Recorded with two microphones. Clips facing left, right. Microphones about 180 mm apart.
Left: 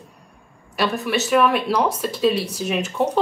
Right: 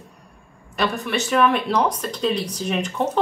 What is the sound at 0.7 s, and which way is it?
A woman's voice, 5° left (ahead or behind).